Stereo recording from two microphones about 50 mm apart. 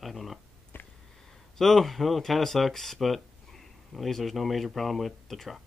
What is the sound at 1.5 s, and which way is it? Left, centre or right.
Speech, centre.